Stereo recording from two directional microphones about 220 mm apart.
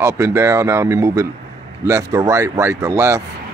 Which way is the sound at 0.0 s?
10° right (ahead or behind).